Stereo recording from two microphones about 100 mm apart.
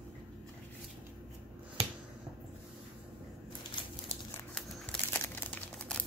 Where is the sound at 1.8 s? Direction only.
70° right (ahead or behind).